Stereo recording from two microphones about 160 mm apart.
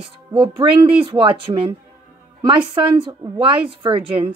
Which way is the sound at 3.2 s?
30° right (ahead or behind).